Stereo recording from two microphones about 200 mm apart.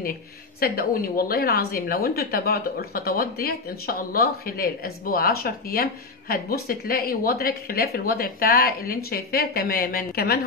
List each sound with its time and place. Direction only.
0.6 s a woman's voice: 50° left (ahead or behind)